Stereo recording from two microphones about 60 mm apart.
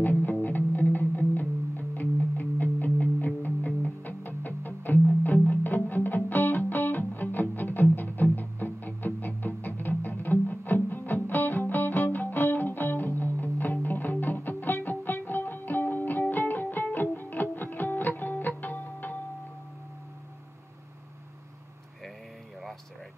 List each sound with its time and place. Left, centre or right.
0.0 s music: left